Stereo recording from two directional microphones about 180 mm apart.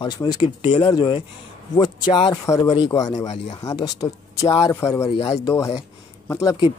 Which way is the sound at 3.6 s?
20° left (ahead or behind).